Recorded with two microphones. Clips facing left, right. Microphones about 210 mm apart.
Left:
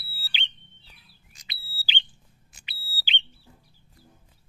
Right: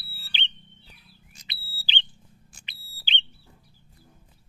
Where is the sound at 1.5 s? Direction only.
10° left (ahead or behind).